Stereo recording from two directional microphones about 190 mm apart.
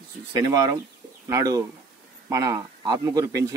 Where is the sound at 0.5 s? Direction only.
20° right (ahead or behind).